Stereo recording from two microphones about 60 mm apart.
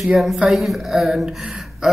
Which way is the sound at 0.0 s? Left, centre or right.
Centre.